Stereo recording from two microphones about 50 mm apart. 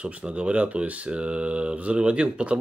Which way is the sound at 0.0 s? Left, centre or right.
Right.